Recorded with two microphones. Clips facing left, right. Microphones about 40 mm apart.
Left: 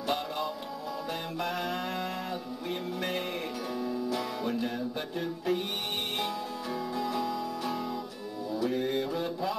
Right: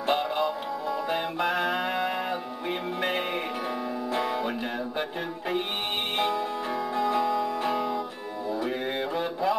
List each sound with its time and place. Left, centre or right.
0.0 s music: right
4.1 s music: right
6.1 s music: right
8.5 s mantra: right